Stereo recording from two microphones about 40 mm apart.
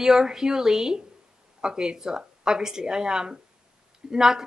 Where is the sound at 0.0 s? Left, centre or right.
Centre.